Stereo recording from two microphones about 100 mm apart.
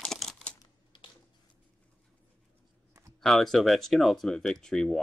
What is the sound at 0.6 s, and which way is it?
Typing, 50° left (ahead or behind).